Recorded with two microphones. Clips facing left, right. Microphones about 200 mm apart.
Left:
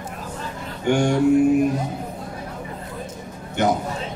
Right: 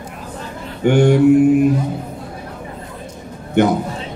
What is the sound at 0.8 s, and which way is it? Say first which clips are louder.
Speech: right 6 dB; 60° right (ahead or behind).